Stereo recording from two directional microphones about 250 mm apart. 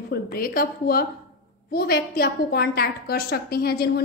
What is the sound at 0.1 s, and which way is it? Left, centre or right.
A woman's voice, left.